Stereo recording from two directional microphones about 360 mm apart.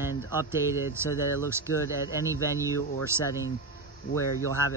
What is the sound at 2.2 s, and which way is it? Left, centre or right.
Speech, centre.